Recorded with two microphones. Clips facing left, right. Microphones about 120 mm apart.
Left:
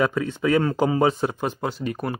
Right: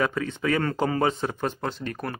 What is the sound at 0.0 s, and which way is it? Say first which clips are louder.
Speech: left 4 dB; 5° left (ahead or behind).